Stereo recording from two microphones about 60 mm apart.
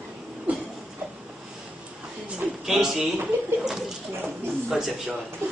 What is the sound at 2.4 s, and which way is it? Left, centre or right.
Speech, centre.